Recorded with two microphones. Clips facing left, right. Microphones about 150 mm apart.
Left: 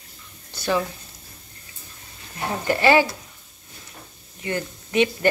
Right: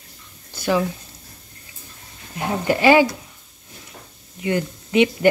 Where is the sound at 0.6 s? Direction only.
15° right (ahead or behind).